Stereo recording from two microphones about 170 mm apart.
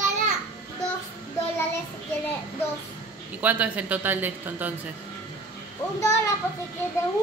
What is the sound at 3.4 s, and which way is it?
A woman's voice, 10° right (ahead or behind).